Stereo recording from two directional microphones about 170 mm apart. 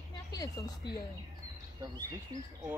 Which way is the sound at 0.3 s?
20° left (ahead or behind).